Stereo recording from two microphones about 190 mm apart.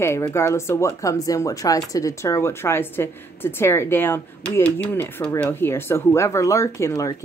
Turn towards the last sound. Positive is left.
turn(degrees=15)  # may be behind; listen again after turning